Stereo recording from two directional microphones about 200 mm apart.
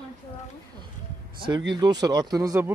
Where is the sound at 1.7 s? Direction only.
20° right (ahead or behind).